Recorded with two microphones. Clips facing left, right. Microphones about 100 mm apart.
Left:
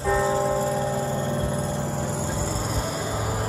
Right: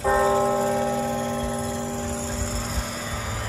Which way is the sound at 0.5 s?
40° left (ahead or behind).